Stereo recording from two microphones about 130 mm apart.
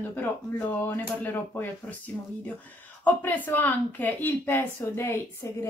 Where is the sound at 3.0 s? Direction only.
15° left (ahead or behind).